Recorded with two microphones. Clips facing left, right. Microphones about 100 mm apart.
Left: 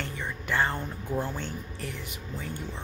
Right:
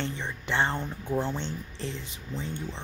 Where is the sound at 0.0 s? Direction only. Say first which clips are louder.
Right 2 dB; 25° right (ahead or behind).